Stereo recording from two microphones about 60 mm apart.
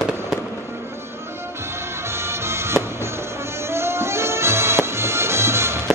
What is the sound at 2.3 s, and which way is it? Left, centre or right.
Music, right.